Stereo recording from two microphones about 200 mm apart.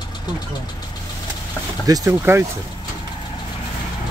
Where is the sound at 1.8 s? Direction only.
15° right (ahead or behind).